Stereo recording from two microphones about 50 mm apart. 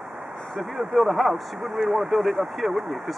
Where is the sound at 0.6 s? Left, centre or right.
Centre.